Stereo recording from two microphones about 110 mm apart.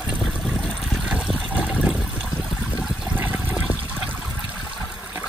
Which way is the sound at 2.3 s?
35° left (ahead or behind).